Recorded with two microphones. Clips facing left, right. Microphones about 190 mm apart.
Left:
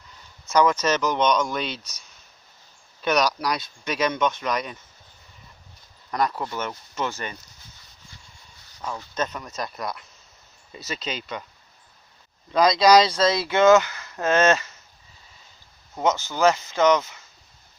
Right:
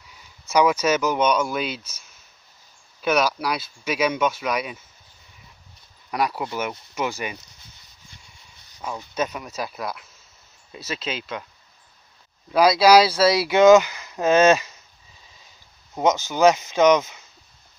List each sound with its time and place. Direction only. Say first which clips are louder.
0.1 s speech: right 1 dB; 10° right (ahead or behind)
6.0 s speech: right 1 dB; 10° right (ahead or behind)
8.8 s speech: right 2 dB; 10° right (ahead or behind)
12.4 s speech: right 2 dB; 5° right (ahead or behind)
15.9 s speech: right 3 dB; 20° right (ahead or behind)